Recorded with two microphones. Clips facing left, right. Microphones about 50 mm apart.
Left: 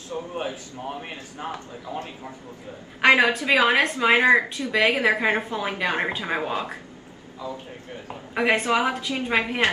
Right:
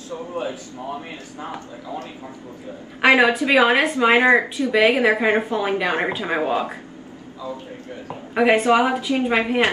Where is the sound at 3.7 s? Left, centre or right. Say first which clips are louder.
Right 3 dB; centre.